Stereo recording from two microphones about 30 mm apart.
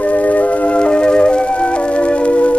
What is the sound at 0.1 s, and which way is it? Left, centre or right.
Music, left.